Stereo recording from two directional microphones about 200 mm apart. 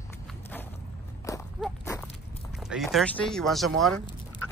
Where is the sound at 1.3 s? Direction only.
15° left (ahead or behind).